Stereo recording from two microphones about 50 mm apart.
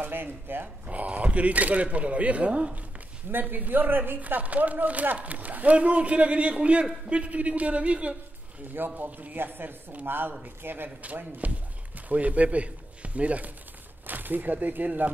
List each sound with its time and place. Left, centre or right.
0.0 s a man's voice: right
0.8 s speech: right
3.3 s speech: right
8.7 s a man's voice: right
11.0 s a man's voice: right
14.0 s speech: right